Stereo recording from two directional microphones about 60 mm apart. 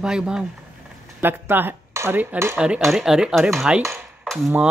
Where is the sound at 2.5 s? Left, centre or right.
Centre.